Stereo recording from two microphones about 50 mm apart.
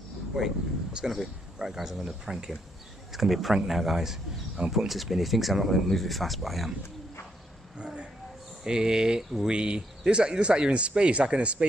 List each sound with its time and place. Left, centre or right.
0.3 s a man's voice: centre
7.7 s a sound: centre
8.6 s speech: centre